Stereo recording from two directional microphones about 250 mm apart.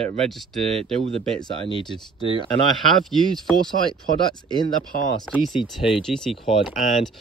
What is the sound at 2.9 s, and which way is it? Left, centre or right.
Speech, centre.